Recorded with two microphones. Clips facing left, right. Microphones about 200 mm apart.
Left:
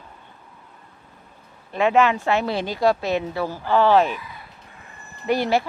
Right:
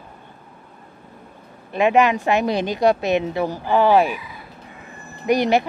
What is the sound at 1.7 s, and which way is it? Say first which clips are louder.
A woman's voice: right 2 dB; 15° right (ahead or behind).